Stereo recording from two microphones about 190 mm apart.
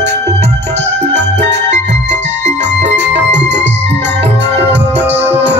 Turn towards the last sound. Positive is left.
turn(degrees=-10)  # may be behind; listen again after turning